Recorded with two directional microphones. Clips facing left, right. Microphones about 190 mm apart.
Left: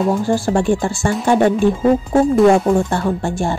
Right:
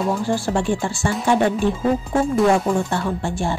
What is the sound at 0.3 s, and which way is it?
Speech, 45° left (ahead or behind).